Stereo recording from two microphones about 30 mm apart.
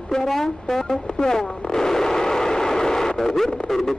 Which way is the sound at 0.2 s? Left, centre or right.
Centre.